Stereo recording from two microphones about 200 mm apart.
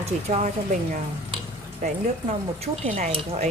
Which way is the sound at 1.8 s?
30° right (ahead or behind).